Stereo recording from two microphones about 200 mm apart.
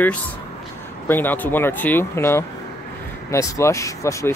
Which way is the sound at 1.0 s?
10° left (ahead or behind).